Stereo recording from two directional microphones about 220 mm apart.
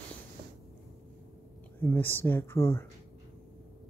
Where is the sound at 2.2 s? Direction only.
10° left (ahead or behind).